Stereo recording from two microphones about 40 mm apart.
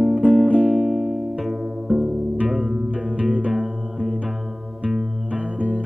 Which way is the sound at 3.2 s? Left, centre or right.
Right.